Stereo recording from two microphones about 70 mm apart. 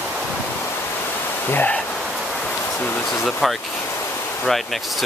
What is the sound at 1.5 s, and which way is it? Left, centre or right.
Speech, left.